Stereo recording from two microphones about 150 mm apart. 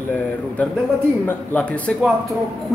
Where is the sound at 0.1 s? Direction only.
10° left (ahead or behind).